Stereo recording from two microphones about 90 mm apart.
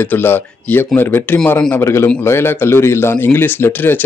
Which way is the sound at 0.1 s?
20° left (ahead or behind).